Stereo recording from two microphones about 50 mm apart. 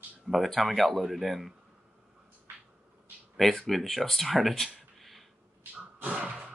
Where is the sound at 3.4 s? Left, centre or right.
Centre.